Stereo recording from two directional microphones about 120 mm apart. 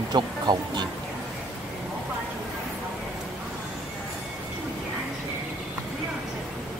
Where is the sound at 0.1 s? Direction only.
35° right (ahead or behind).